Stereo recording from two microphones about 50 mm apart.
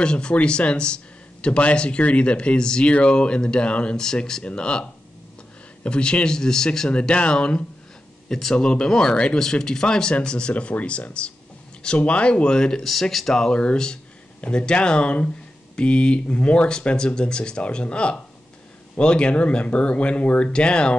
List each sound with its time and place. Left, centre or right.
0.0 s speech: centre
5.9 s speech: left
8.3 s speech: centre
13.5 s speech: centre